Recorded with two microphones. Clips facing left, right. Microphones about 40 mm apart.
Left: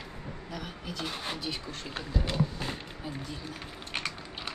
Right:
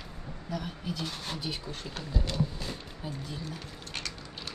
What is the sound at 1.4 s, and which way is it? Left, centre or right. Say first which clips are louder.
Speech: even; centre.